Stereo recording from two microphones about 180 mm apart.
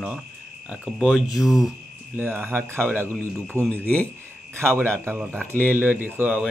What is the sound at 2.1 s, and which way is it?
Speech, 10° right (ahead or behind).